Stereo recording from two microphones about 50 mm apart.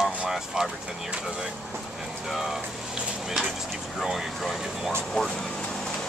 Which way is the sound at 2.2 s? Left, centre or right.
Centre.